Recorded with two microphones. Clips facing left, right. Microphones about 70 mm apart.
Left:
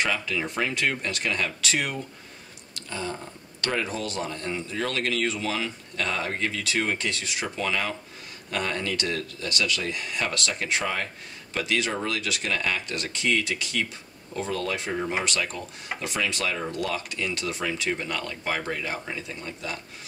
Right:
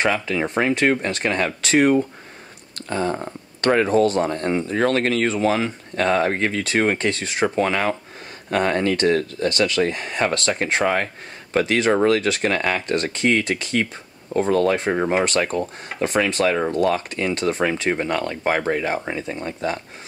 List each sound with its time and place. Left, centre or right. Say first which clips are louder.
0.0 s speech: right 6 dB; right